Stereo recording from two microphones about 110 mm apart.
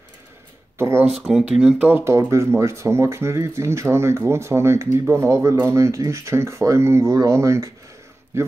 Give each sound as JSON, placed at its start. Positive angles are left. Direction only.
{"t": 0.7, "sound": "speech", "side_deg": -20}
{"t": 1.1, "sound": "speech", "side_deg": -5}
{"t": 1.9, "sound": "speech", "side_deg": -20}